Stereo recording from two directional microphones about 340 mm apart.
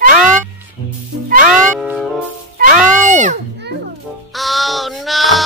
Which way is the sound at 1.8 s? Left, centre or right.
Centre.